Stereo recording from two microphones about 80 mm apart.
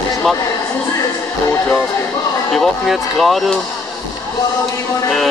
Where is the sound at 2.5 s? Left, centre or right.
Centre.